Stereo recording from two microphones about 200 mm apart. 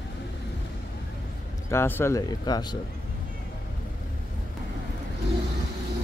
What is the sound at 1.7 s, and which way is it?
Speech, 10° left (ahead or behind).